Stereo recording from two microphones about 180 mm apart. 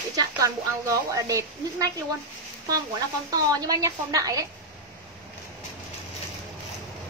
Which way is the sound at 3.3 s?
20° right (ahead or behind).